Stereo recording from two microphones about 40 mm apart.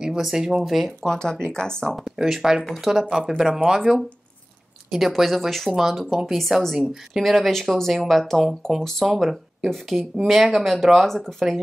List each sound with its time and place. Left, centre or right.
0.0 s speech: centre
1.0 s speech: centre
2.2 s speech: centre
2.7 s speech: centre
6.3 s speech: centre
9.0 s speech: centre